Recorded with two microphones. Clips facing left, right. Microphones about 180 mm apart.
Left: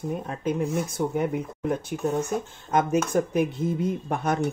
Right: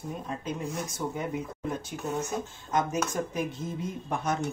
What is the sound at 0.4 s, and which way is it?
Speech, 60° left (ahead or behind).